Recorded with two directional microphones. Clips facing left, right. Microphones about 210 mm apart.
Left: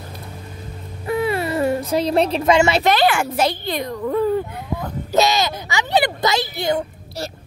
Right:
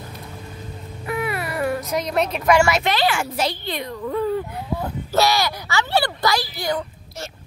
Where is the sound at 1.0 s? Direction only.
30° left (ahead or behind).